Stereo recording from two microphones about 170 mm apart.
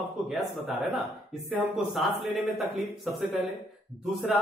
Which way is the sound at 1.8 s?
Centre (ahead or behind).